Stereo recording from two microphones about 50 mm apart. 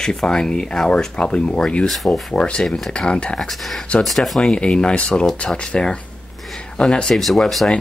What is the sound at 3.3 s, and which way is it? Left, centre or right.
Speech, centre.